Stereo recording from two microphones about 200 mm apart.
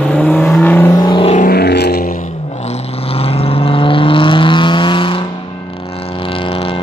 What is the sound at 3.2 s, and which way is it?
Vehicle, 30° left (ahead or behind).